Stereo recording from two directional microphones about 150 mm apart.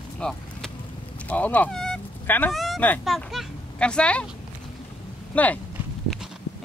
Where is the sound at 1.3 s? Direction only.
10° left (ahead or behind).